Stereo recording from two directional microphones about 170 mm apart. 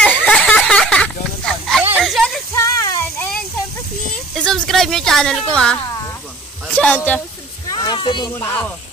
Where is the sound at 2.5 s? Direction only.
20° left (ahead or behind).